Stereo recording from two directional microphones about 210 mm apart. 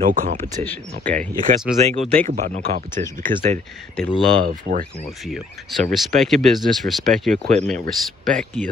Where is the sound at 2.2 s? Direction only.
35° right (ahead or behind).